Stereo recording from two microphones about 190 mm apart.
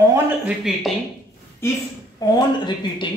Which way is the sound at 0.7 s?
5° right (ahead or behind).